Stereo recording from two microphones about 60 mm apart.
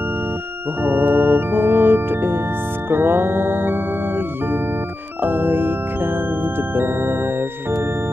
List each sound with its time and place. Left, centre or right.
0.8 s organ: right
2.9 s music: right
5.2 s music: right